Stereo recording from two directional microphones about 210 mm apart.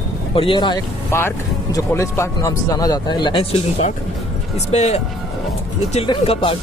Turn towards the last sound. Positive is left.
turn(degrees=25)  # may be behind; listen again after turning